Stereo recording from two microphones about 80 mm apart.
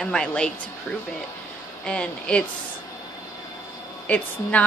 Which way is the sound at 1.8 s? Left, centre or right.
Centre.